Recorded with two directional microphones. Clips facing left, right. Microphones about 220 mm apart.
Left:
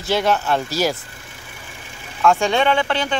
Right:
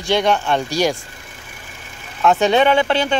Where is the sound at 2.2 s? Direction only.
20° right (ahead or behind).